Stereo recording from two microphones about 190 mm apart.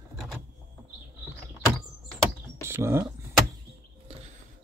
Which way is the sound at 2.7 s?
15° right (ahead or behind).